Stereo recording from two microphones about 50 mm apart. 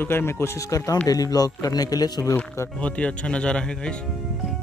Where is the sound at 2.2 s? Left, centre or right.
Left.